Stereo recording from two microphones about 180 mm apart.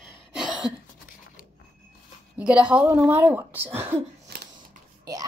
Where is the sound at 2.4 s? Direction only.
5° right (ahead or behind).